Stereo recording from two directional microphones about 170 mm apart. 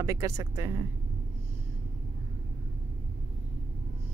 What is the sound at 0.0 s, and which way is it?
Speech, 20° right (ahead or behind).